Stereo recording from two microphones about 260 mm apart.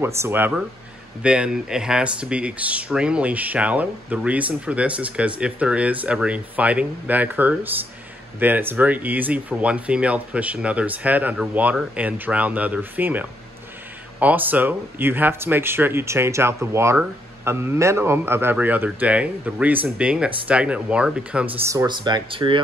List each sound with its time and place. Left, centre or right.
0.0 s speech: centre
21.5 s speech: centre